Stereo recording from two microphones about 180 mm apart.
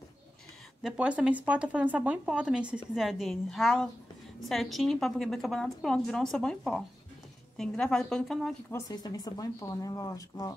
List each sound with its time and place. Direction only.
0.8 s speech: 5° right (ahead or behind)
8.7 s speech: 20° left (ahead or behind)